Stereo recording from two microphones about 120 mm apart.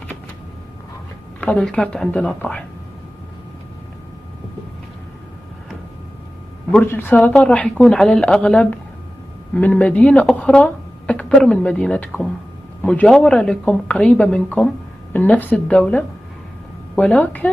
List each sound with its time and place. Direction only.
1.4 s speech: 10° left (ahead or behind)
6.7 s speech: 15° left (ahead or behind)